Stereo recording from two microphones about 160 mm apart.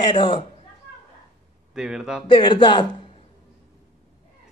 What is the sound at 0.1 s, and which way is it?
Speech, 30° left (ahead or behind).